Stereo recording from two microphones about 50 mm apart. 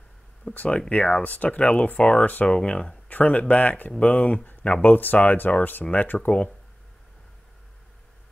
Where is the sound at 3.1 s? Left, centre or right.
Left.